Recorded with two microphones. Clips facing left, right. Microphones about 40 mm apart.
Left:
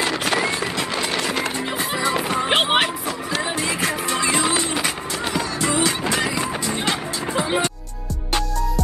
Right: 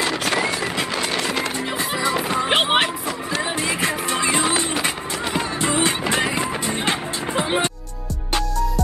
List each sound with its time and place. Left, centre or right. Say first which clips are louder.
0.9 s vehicle: even; left
2.4 s a sound: even; centre
3.5 s music: even; right